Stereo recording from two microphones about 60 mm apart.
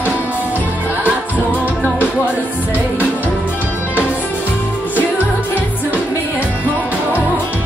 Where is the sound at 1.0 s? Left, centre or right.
Right.